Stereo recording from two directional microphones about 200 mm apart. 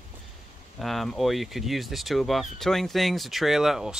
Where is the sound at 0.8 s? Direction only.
Centre (ahead or behind).